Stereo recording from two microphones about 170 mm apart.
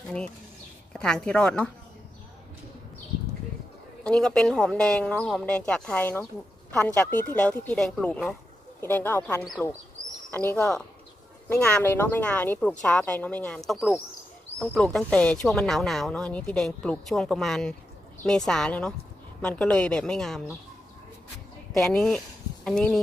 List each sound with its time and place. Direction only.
0.9 s speech: 5° left (ahead or behind)
4.0 s speech: 5° left (ahead or behind)
10.0 s bird: 20° right (ahead or behind)
10.5 s speech: 5° left (ahead or behind)
21.7 s speech: 5° left (ahead or behind)